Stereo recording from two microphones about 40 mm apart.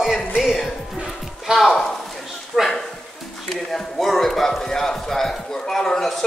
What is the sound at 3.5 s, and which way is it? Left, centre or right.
Speech, centre.